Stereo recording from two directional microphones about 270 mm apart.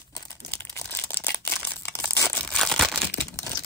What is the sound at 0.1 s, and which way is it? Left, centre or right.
Crumpling, centre.